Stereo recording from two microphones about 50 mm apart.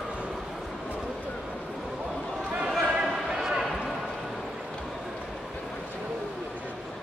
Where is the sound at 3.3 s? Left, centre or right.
Centre.